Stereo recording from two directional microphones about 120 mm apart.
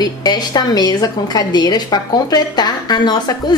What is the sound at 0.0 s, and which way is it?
A woman's voice, 35° left (ahead or behind).